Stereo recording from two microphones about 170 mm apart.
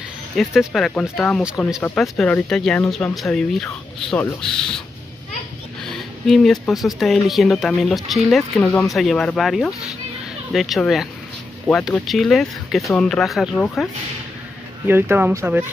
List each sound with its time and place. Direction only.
0.4 s speech: centre (ahead or behind)
5.9 s speech: centre (ahead or behind)
14.9 s speech: 10° right (ahead or behind)